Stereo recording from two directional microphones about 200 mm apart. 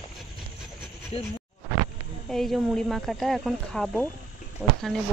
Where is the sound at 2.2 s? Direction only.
Centre (ahead or behind).